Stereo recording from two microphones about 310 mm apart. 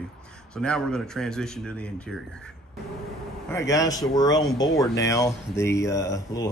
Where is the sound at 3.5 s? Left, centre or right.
Centre.